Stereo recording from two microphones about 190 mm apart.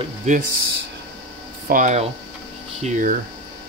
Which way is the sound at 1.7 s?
40° right (ahead or behind).